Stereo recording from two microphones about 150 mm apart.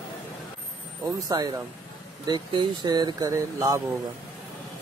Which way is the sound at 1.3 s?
25° right (ahead or behind).